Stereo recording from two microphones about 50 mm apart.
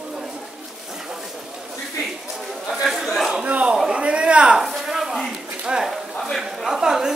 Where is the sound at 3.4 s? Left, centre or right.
Right.